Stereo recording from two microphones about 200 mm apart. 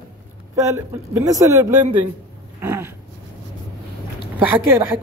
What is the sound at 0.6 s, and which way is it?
A man's voice, 15° right (ahead or behind).